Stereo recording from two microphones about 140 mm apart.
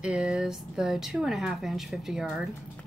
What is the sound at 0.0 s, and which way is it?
Speech, 5° right (ahead or behind).